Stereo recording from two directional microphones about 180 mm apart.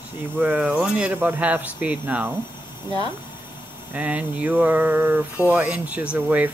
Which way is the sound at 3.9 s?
10° right (ahead or behind).